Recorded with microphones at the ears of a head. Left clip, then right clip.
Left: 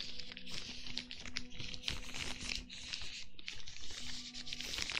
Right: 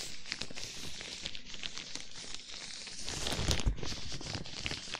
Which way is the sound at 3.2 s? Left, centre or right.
Right.